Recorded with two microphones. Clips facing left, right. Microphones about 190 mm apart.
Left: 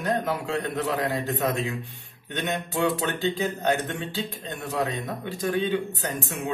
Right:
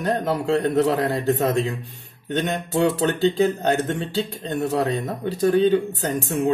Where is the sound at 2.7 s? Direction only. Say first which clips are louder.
Right 5 dB; 40° right (ahead or behind).